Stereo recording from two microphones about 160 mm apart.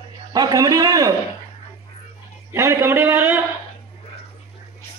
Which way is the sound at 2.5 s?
15° right (ahead or behind).